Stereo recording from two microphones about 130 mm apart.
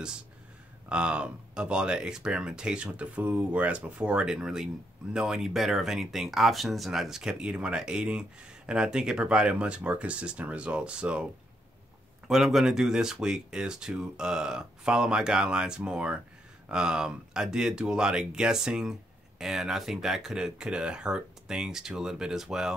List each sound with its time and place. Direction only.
0.8 s speech: 10° right (ahead or behind)
12.3 s speech: 5° right (ahead or behind)